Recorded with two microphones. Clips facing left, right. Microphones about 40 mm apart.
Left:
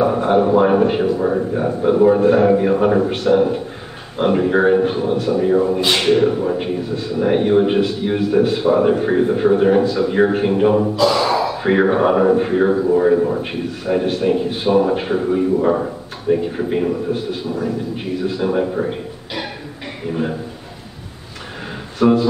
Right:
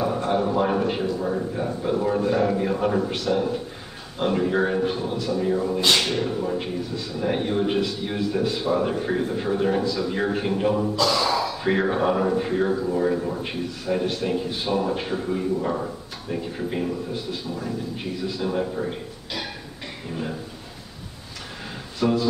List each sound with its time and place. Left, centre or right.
0.0 s a man's voice: left
17.6 s a man's voice: centre
22.0 s speech: left